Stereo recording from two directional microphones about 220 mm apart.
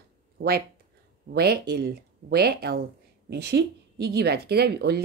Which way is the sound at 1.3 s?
45° right (ahead or behind).